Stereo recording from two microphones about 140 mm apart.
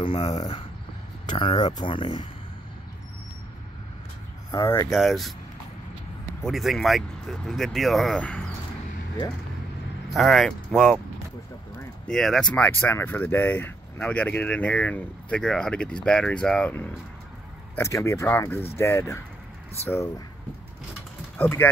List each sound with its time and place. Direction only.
0.0 s speech: 40° left (ahead or behind)
4.6 s speech: 20° left (ahead or behind)
4.9 s speech: centre (ahead or behind)
6.4 s speech: centre (ahead or behind)
10.0 s speech: centre (ahead or behind)
12.1 s speech: 5° left (ahead or behind)
17.7 s speech: 20° left (ahead or behind)
21.4 s speech: 15° left (ahead or behind)